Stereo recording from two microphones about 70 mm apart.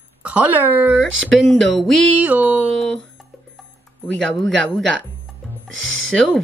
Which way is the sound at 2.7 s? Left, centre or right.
Centre.